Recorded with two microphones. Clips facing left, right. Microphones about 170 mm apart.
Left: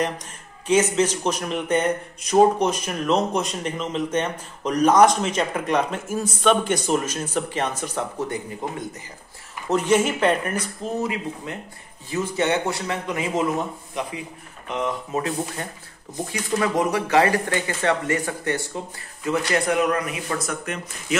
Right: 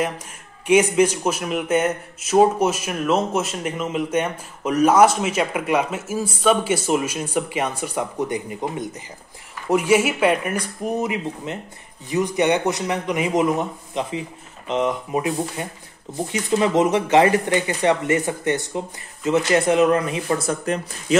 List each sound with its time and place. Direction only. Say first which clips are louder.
0.7 s a man's voice: right 3 dB; 10° right (ahead or behind)
9.7 s a man's voice: right 2 dB; 10° right (ahead or behind); by 21.2 s 35° right (ahead or behind)